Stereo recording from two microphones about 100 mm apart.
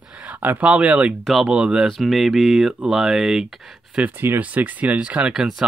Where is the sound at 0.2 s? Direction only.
15° right (ahead or behind).